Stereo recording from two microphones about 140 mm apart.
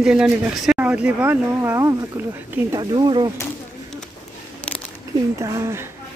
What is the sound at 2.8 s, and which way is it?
Speech, 35° right (ahead or behind).